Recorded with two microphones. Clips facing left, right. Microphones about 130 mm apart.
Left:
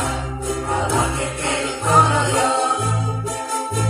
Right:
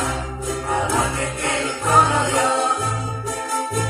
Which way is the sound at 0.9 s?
25° left (ahead or behind).